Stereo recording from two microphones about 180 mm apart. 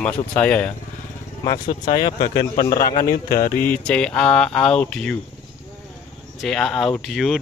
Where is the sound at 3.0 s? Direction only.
50° left (ahead or behind).